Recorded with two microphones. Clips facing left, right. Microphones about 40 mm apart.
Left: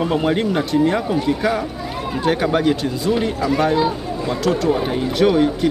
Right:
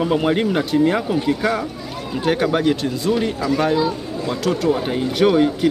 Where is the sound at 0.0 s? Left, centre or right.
Centre.